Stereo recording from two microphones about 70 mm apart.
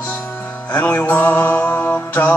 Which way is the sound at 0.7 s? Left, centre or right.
Left.